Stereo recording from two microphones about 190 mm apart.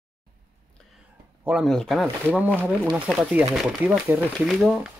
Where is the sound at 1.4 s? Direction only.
5° right (ahead or behind).